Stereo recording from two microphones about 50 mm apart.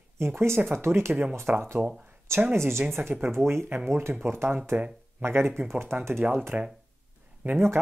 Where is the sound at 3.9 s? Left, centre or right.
Right.